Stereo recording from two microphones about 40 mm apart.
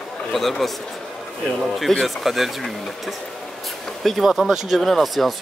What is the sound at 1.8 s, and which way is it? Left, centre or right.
Speech, centre.